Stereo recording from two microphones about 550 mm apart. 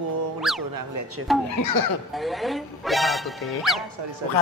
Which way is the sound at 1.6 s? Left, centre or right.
Left.